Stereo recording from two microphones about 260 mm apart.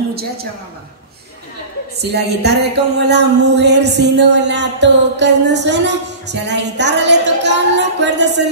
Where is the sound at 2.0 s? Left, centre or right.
Right.